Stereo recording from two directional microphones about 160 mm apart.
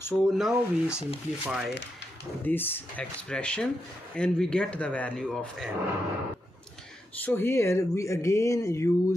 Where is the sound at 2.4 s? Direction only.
15° left (ahead or behind).